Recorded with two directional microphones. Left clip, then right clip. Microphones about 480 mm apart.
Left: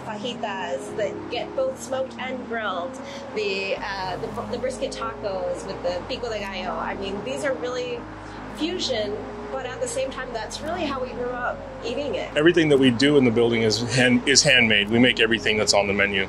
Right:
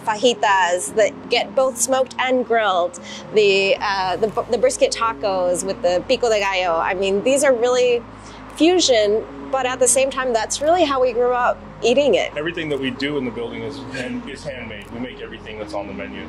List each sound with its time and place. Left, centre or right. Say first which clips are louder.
0.1 s a woman's voice: right 14 dB; right
2.5 s a woman's voice: right 10 dB; right
12.4 s speech: left 6 dB; left
14.2 s speech: left 14 dB; left